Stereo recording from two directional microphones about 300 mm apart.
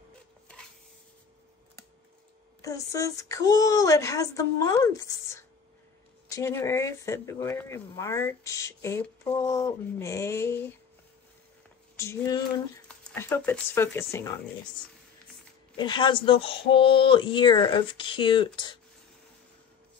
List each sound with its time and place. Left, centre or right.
2.6 s speech: centre
12.0 s speech: centre
15.7 s speech: centre